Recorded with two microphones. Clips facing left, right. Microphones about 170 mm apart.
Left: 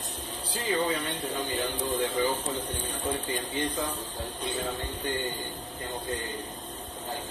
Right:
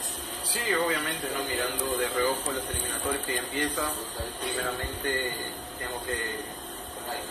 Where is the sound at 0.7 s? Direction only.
25° left (ahead or behind).